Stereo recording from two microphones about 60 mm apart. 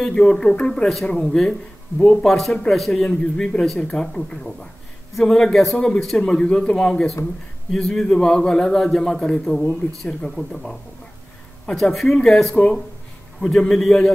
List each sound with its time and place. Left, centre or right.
0.0 s a man's voice: centre
3.1 s a man's voice: centre